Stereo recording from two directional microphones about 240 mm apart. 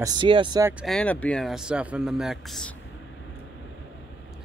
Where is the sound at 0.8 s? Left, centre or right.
Centre.